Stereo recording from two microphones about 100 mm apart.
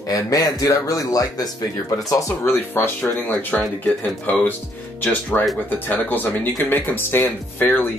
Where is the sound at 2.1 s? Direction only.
30° left (ahead or behind).